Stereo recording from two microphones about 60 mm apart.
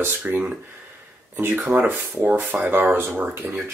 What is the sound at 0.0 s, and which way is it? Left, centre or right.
Speech, right.